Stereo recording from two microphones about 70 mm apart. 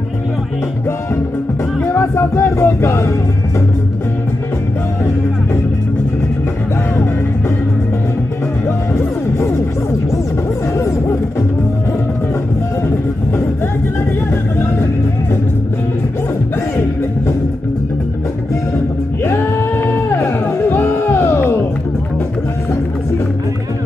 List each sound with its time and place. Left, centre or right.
2.0 s music: left
8.6 s music: left
19.2 s music: left